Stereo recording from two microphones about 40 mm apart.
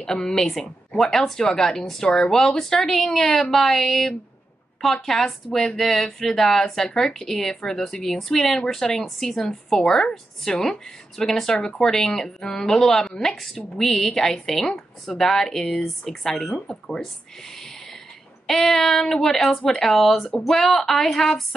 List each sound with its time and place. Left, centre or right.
0.0 s speech: left
18.6 s speech: centre